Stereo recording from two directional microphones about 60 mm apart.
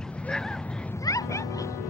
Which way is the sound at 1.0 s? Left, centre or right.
Left.